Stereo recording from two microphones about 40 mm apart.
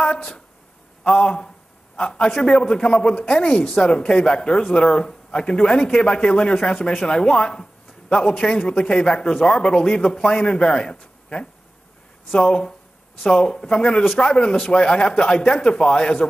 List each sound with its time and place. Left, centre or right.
0.0 s a man's voice: centre